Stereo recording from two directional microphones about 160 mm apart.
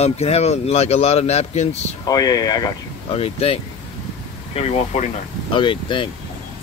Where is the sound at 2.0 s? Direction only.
25° left (ahead or behind).